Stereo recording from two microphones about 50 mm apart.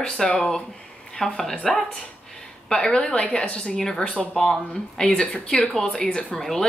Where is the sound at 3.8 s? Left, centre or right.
Centre.